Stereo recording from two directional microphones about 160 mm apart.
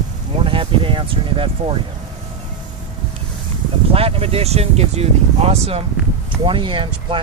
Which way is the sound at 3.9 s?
35° right (ahead or behind).